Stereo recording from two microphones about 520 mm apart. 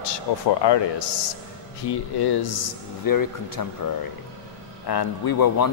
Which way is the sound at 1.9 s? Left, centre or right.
Left.